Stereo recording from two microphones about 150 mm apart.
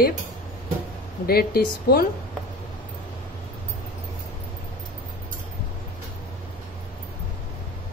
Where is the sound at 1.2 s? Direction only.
90° left.